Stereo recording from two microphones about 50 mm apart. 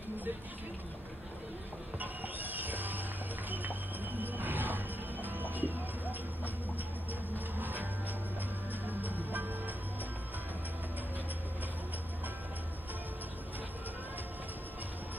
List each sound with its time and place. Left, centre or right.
2.0 s a sound: right
7.3 s music: right
8.8 s music: right